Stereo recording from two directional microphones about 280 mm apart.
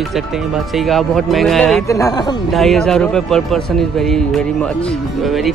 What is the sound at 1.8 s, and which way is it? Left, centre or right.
Speech, centre.